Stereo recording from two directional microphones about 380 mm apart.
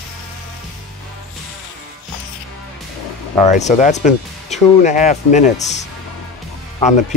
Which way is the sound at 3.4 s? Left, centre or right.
Centre.